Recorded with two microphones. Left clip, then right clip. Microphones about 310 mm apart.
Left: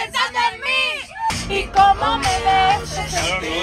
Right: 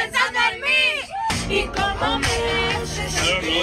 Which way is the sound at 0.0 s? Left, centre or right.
Centre.